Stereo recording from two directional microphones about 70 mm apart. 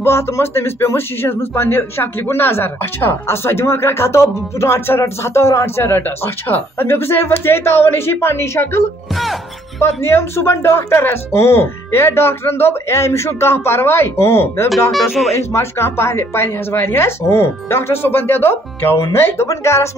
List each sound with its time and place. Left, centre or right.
0.0 s speech: left
9.1 s music: centre
9.8 s speech: left
14.9 s speech: centre
15.3 s speech: left
19.4 s speech: left